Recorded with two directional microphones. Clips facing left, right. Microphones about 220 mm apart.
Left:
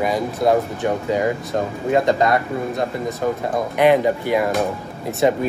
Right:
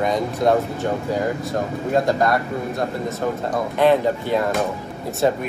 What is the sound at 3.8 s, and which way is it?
Speech, 15° left (ahead or behind).